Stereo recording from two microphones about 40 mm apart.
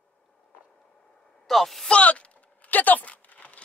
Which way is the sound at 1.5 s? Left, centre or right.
Centre.